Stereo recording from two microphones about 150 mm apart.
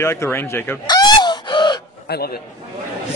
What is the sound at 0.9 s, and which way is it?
Crow, 30° left (ahead or behind).